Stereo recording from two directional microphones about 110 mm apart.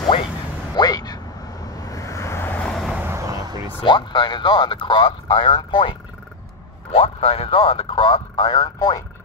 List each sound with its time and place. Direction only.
0.7 s vehicle: 40° left (ahead or behind); by 2.6 s 20° left (ahead or behind)
2.6 s vehicle: 5° left (ahead or behind)
3.0 s vehicle: 25° right (ahead or behind)
3.8 s speech: 45° left (ahead or behind)
6.9 s speech: 65° left (ahead or behind)
7.9 s speech: 45° left (ahead or behind)